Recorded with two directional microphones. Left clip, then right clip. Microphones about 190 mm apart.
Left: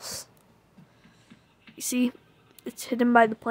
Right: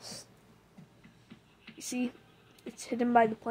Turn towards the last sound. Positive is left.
turn(degrees=30)  # may be behind; listen again after turning